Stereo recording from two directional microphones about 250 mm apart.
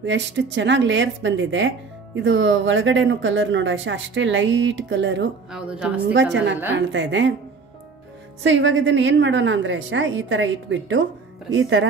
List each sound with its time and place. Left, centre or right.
0.0 s speech: right
5.5 s a woman's voice: centre
6.0 s speech: right
8.5 s speech: right